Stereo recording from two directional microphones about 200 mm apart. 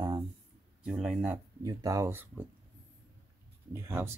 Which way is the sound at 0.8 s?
5° right (ahead or behind).